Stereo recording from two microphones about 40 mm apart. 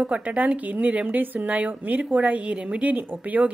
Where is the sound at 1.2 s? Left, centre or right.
Right.